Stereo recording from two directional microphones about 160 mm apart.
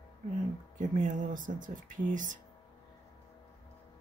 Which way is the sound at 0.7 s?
50° right (ahead or behind).